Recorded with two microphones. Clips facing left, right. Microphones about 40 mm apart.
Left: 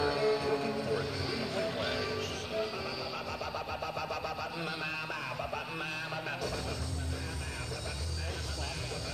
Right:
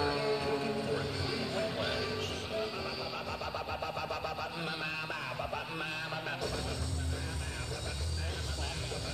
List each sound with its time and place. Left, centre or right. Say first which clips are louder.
0.0 s music: left 2 dB; right
1.7 s music: left 1 dB; centre
2.0 s music: left 1 dB; right
3.5 s a sound: even; right